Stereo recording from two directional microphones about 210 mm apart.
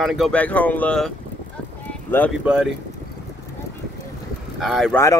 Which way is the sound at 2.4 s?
5° right (ahead or behind).